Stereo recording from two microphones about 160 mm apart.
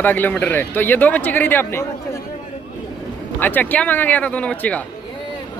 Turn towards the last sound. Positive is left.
turn(degrees=10)  # may be behind; listen again after turning